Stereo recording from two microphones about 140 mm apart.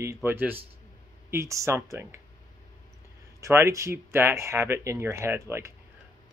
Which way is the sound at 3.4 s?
20° right (ahead or behind).